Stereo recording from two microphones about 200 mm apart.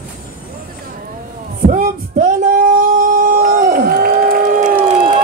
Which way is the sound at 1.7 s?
40° right (ahead or behind).